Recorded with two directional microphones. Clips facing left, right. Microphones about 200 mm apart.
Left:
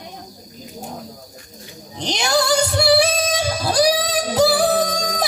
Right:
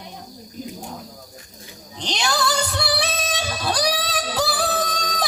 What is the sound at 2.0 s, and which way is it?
Music, 25° left (ahead or behind).